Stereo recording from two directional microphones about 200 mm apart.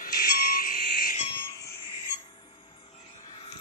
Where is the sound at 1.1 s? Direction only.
25° left (ahead or behind).